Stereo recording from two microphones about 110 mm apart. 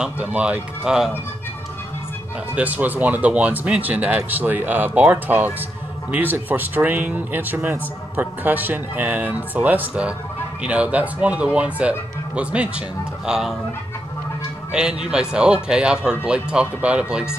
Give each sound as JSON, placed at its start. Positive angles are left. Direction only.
{"t": 0.0, "sound": "speech", "side_deg": -10}
{"t": 2.5, "sound": "speech", "side_deg": -15}
{"t": 14.7, "sound": "speech", "side_deg": -5}